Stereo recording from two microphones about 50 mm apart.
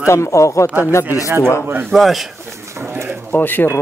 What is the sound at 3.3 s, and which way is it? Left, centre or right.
Speech, left.